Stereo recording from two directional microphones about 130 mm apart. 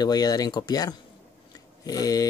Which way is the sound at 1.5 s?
30° left (ahead or behind).